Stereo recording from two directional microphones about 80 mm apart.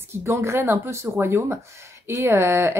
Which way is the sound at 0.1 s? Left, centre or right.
Right.